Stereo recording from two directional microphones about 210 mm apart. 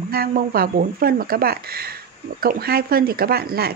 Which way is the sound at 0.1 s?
45° right (ahead or behind).